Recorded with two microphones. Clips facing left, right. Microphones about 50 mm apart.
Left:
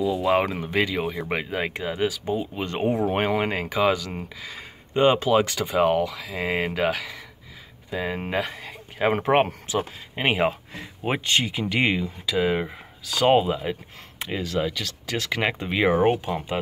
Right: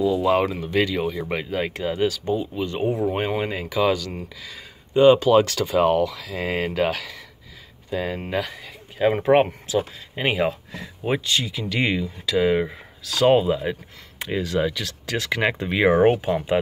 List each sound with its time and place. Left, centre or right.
0.0 s speech: centre; by 2.6 s left
2.6 s speech: left
3.8 s speech: left
5.3 s speech: centre
8.3 s speech: left
11.2 s speech: left
11.7 s speech: left; by 15.5 s centre
15.9 s speech: centre
16.3 s speech: centre